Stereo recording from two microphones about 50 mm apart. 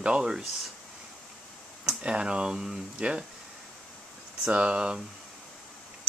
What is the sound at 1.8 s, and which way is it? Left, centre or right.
Speech, centre.